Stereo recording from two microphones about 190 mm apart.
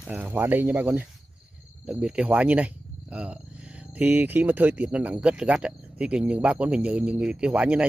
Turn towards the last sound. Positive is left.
turn(degrees=-5)  # may be behind; listen again after turning